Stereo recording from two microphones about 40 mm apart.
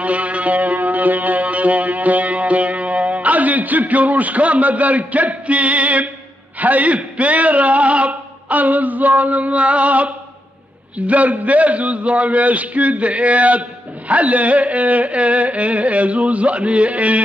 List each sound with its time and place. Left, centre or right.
0.0 s music: right
6.6 s a man's voice: right